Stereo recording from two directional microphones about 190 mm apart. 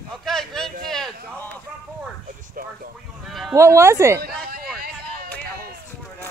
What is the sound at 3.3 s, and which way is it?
Speech, centre (ahead or behind).